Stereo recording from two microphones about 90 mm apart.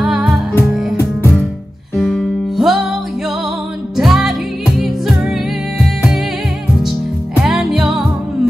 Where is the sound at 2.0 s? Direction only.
Centre (ahead or behind).